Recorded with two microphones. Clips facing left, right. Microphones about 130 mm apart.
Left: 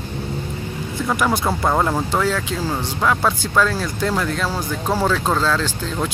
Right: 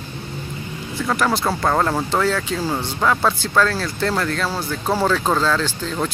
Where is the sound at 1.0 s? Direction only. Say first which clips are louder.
Even; 5° left (ahead or behind).